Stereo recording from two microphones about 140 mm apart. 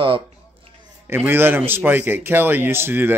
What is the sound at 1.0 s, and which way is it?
Speech, 15° right (ahead or behind).